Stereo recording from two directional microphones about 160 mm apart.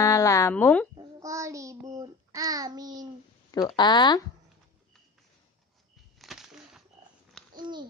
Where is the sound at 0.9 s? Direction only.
20° right (ahead or behind).